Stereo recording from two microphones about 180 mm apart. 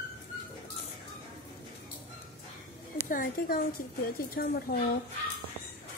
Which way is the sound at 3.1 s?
50° left (ahead or behind).